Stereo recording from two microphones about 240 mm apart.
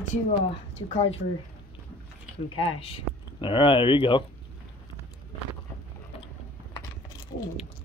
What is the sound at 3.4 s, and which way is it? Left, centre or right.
Speech, left.